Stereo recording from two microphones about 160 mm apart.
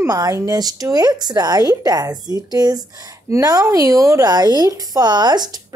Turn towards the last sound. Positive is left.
turn(degrees=-25)  # may be behind; listen again after turning